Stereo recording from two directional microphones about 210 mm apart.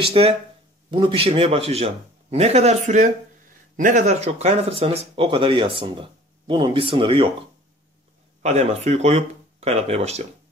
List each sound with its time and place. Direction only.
0.0 s speech: 25° right (ahead or behind)
8.4 s speech: 30° right (ahead or behind)